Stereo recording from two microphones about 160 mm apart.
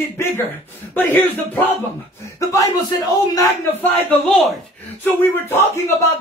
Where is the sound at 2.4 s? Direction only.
20° left (ahead or behind).